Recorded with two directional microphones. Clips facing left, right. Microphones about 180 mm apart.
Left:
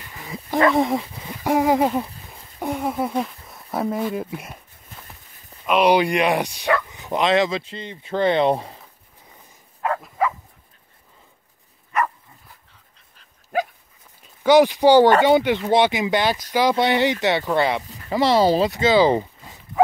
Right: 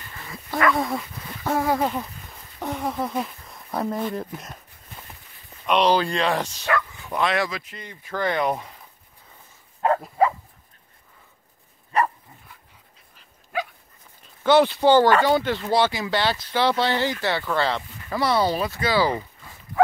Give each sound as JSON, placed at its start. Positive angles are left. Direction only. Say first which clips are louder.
{"t": 0.1, "sound": "a sound", "louder": "left 5 dB", "side_deg": 15}
{"t": 0.6, "sound": "speech", "louder": "left 5 dB", "side_deg": 25}
{"t": 1.3, "sound": "speech", "louder": "left 5 dB", "side_deg": 15}
{"t": 2.6, "sound": "a sound", "louder": "left 3 dB", "side_deg": 10}
{"t": 3.2, "sound": "speech", "louder": "left 3 dB", "side_deg": 0}
{"t": 5.7, "sound": "speech", "louder": "left 3 dB", "side_deg": 10}
{"t": 9.8, "sound": "dog", "louder": "right 3 dB", "side_deg": -35}
{"t": 11.9, "sound": "dog", "louder": "right 1 dB", "side_deg": -30}
{"t": 13.5, "sound": "dog", "louder": "left 5 dB", "side_deg": 45}
{"t": 14.2, "sound": "speech", "louder": "left 3 dB", "side_deg": 10}